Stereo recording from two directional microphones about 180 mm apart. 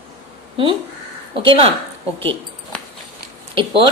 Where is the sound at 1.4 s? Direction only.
30° right (ahead or behind).